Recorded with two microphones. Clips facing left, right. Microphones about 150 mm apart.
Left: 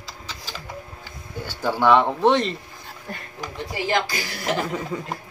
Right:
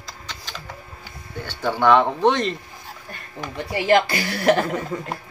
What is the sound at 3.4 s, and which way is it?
A woman's voice, 60° right (ahead or behind).